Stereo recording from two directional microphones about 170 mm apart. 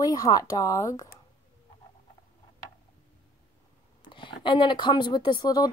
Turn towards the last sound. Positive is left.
turn(degrees=25)  # may be behind; listen again after turning